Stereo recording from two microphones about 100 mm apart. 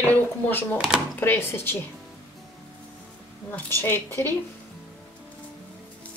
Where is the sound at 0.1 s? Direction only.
15° left (ahead or behind).